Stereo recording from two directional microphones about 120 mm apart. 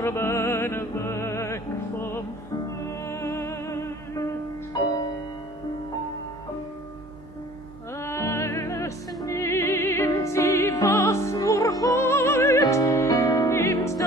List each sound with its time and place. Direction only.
0.0 s music: 20° left (ahead or behind)
4.7 s music: 35° left (ahead or behind)
8.0 s music: 25° left (ahead or behind)